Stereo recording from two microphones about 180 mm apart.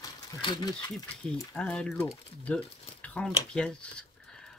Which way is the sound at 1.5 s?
5° left (ahead or behind).